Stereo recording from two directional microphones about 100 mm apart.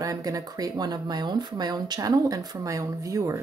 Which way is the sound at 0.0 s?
35° right (ahead or behind).